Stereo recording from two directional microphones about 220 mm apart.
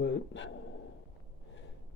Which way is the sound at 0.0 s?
55° left (ahead or behind).